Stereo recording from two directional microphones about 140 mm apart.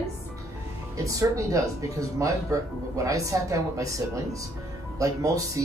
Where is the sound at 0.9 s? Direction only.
25° right (ahead or behind).